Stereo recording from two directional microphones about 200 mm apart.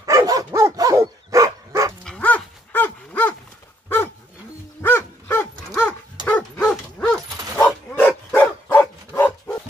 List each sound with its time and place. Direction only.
0.0 s dog: 15° right (ahead or behind)
2.0 s dog: 5° left (ahead or behind)
4.8 s dog: 10° left (ahead or behind)